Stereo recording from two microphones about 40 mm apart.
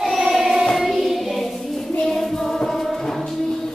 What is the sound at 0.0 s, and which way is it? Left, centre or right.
Child singing, centre.